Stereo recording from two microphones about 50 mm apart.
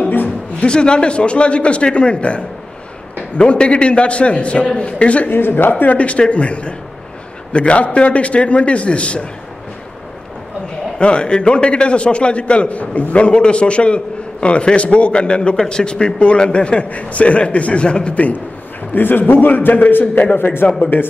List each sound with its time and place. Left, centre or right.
0.0 s a sound: left
0.6 s a man's voice: centre
5.3 s a man's voice: left
11.0 s a man's voice: centre
18.9 s a man's voice: left
20.3 s a man's voice: left
20.8 s a man's voice: left